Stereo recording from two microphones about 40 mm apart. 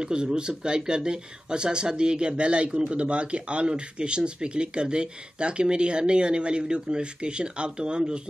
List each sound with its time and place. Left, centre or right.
0.0 s speech: right